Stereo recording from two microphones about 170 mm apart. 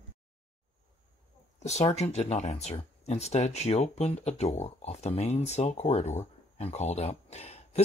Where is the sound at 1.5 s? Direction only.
40° left (ahead or behind).